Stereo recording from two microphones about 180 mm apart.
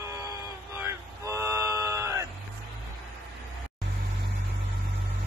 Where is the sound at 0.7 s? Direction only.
15° right (ahead or behind).